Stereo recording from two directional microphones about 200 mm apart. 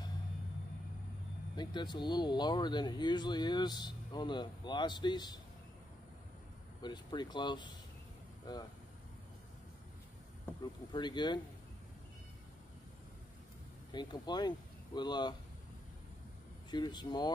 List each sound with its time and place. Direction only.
1.6 s speech: 20° left (ahead or behind)
6.8 s speech: 20° left (ahead or behind)
10.6 s speech: 20° left (ahead or behind)
13.9 s speech: 20° left (ahead or behind)
16.7 s speech: 20° left (ahead or behind)